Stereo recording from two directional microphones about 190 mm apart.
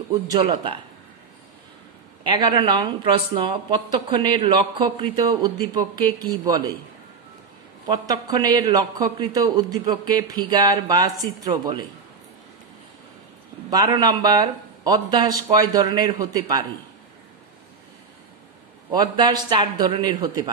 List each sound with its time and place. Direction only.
2.2 s speech: 25° right (ahead or behind)
7.8 s speech: 20° right (ahead or behind)
13.7 s speech: 20° right (ahead or behind)
18.9 s speech: 20° right (ahead or behind)